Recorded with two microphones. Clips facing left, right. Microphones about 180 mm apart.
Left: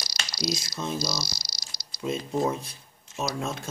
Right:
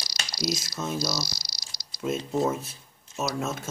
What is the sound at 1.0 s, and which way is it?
Speech, 20° left (ahead or behind).